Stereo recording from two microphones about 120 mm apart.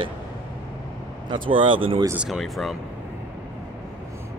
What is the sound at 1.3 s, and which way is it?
Speech, 45° right (ahead or behind).